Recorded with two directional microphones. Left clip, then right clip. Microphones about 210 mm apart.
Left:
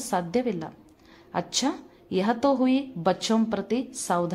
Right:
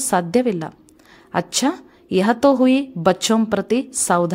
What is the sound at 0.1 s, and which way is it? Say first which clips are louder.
A woman's voice: right 8 dB; 30° right (ahead or behind).